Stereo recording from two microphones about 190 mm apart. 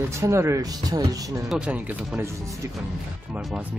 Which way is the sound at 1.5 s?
5° right (ahead or behind).